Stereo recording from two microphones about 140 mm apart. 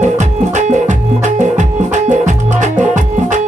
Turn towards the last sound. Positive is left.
turn(degrees=-60)  # may be behind; listen again after turning